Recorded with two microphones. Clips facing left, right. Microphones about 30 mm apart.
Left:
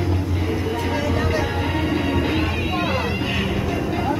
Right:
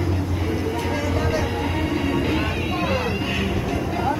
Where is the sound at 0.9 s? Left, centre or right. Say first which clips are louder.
Left 2 dB; centre.